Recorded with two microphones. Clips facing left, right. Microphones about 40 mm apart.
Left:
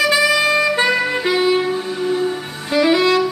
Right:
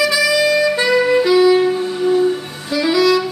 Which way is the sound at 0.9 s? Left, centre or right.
Centre.